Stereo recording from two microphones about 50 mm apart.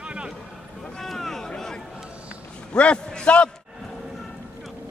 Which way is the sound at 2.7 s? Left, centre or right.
Left.